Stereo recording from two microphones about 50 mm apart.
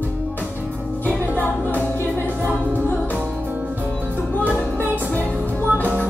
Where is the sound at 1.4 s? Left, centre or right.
Left.